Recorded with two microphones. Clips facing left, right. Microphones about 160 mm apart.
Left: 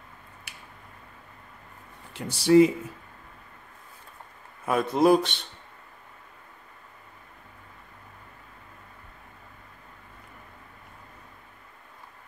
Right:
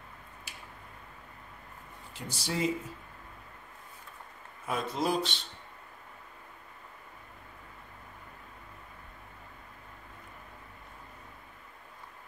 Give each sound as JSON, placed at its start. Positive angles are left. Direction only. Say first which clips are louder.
{"t": 0.5, "sound": "a sound", "louder": "even", "side_deg": 65}
{"t": 2.1, "sound": "speech", "louder": "left 17 dB", "side_deg": 65}
{"t": 4.6, "sound": "speech", "louder": "left 11 dB", "side_deg": 60}